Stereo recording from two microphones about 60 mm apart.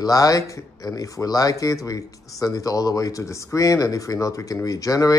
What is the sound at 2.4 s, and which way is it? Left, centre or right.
A man's voice, left.